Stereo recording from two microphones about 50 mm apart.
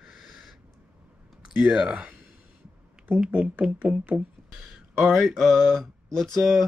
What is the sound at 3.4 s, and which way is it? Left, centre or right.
Speech, centre.